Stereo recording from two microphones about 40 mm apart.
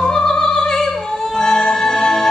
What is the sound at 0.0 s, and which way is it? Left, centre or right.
Opera, centre.